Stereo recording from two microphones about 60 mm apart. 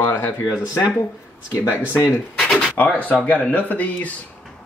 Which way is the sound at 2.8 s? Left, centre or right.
Left.